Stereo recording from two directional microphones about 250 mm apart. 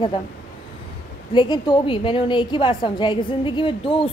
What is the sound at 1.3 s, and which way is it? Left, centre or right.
A woman's voice, centre.